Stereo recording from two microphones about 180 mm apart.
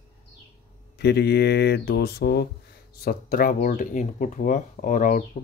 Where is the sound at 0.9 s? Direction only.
65° left (ahead or behind).